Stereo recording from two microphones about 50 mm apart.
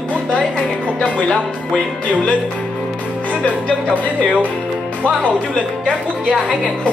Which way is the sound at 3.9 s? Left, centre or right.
Right.